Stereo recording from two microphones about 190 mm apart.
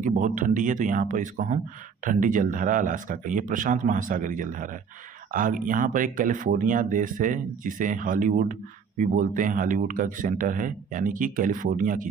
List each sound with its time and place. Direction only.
0.0 s speech: 45° right (ahead or behind)